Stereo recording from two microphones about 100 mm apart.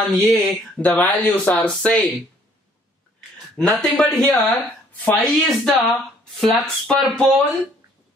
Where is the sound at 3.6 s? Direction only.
5° left (ahead or behind).